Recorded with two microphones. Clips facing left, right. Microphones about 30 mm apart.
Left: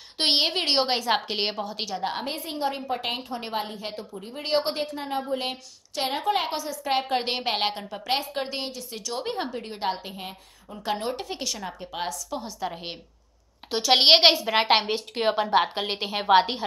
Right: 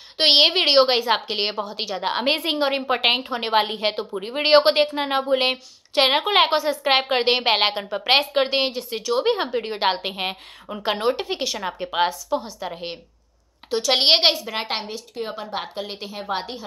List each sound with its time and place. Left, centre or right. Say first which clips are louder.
0.2 s a woman's voice: right 7 dB; right
1.1 s a woman's voice: right 3 dB; centre
2.0 s a woman's voice: right 6 dB; right
2.2 s a woman's voice: right 8 dB; right
3.3 s a woman's voice: right 9 dB; right
6.5 s a woman's voice: right 7 dB; right
10.8 s a woman's voice: right 6 dB; right
12.3 s a woman's voice: right 5 dB; centre
13.7 s a woman's voice: even; centre
15.7 s a woman's voice: left 3 dB; left